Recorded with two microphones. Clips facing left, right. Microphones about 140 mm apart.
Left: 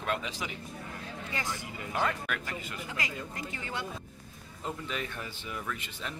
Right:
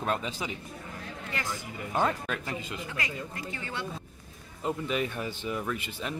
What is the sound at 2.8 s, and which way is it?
Speech, 20° left (ahead or behind).